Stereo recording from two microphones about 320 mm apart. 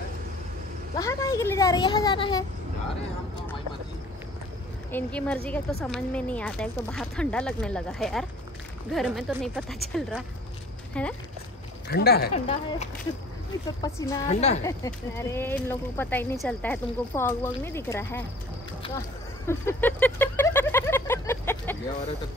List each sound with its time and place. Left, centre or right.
0.9 s speech: centre
4.9 s speech: centre
11.9 s speech: left
12.4 s speech: centre
14.2 s speech: left
14.6 s speech: centre
19.4 s a sound: centre